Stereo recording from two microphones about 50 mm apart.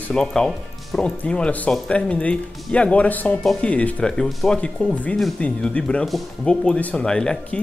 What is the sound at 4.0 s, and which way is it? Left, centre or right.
Speech, centre.